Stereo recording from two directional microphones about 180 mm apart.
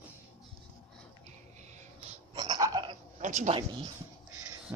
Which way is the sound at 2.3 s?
25° right (ahead or behind).